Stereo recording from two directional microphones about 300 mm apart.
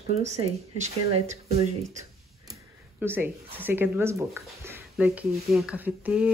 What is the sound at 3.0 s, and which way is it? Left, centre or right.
Speech, centre.